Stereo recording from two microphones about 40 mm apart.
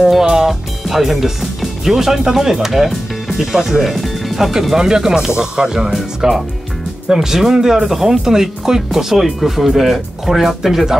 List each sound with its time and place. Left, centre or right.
0.2 s music: centre
0.8 s speech: centre
2.9 s music: centre
3.5 s speech: centre